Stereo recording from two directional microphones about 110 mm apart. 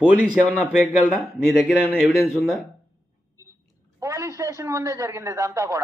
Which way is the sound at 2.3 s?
5° right (ahead or behind).